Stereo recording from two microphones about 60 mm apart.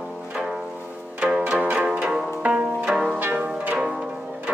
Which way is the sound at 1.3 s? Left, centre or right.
Centre.